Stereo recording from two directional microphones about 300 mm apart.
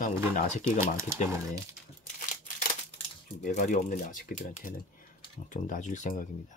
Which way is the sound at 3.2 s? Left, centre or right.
Left.